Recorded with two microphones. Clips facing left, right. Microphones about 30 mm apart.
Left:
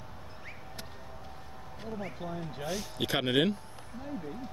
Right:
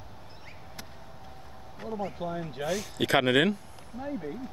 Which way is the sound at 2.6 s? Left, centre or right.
Centre.